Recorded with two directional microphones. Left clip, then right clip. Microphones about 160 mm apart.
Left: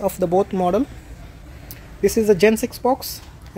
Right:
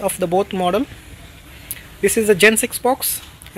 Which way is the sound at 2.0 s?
5° left (ahead or behind).